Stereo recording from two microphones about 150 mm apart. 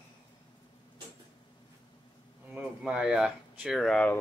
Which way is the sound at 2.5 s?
5° right (ahead or behind).